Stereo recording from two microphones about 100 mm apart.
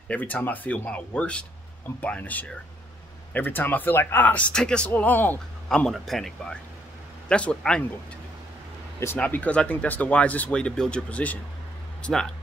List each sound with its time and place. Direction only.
0.1 s speech: 15° left (ahead or behind)
5.7 s a man's voice: 5° left (ahead or behind)
9.2 s speech: 15° left (ahead or behind)